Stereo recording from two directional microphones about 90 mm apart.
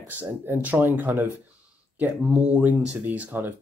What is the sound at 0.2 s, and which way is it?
Speech, 20° right (ahead or behind).